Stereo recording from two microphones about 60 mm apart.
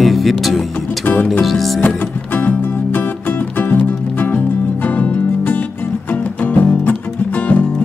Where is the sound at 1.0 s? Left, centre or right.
Left.